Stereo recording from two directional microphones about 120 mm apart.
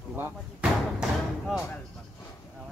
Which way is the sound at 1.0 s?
Centre (ahead or behind).